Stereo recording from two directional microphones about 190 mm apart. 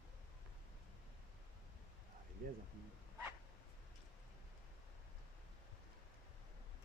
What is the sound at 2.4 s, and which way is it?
Speech, 50° right (ahead or behind).